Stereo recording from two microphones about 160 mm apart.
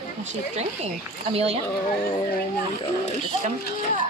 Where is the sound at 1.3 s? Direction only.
40° right (ahead or behind).